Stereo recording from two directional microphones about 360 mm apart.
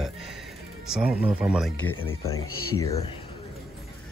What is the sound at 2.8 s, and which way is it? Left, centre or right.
Speech, centre.